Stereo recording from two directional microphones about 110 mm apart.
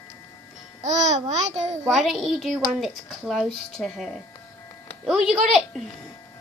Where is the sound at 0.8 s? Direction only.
90° right.